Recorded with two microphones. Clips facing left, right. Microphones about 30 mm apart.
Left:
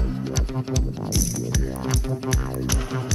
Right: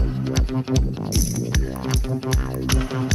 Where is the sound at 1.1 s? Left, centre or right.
Centre.